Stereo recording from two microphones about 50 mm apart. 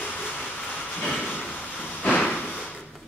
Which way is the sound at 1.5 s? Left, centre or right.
Left.